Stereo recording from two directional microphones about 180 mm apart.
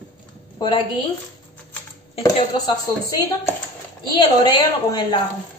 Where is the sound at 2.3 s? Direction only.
25° left (ahead or behind).